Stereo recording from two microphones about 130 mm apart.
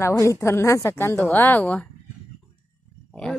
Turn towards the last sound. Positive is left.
turn(degrees=5)  # may be behind; listen again after turning